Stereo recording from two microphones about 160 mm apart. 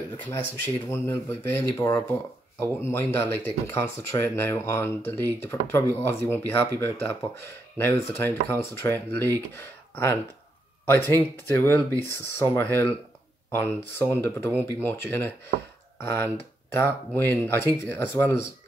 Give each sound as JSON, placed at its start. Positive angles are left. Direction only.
{"t": 0.2, "sound": "speech", "side_deg": 15}